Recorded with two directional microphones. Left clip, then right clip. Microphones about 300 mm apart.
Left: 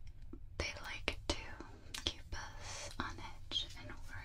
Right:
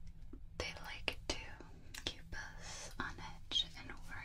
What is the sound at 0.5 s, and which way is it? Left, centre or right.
Whispering, centre.